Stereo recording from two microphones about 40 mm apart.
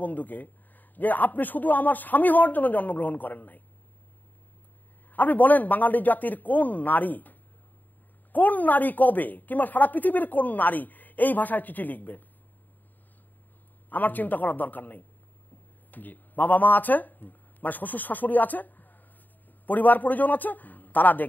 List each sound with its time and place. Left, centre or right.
0.0 s a woman's voice: left
5.1 s a woman's voice: left
13.8 s a woman's voice: left